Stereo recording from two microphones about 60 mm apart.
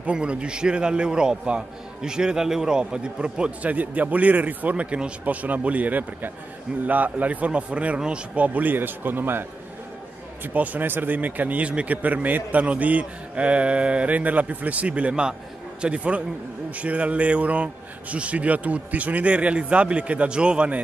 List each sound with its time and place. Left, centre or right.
0.0 s a man's voice: centre
3.7 s speech: right
8.5 s a man's voice: right
10.4 s speech: right